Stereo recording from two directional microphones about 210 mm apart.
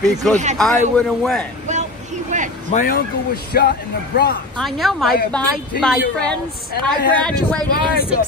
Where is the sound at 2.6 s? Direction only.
40° left (ahead or behind).